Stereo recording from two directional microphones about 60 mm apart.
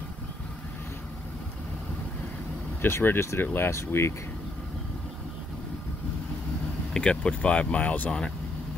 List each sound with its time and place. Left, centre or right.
2.8 s speech: left
6.9 s speech: centre